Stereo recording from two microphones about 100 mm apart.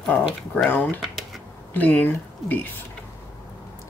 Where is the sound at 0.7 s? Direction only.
20° left (ahead or behind).